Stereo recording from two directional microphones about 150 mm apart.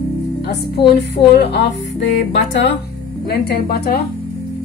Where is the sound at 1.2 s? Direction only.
30° left (ahead or behind).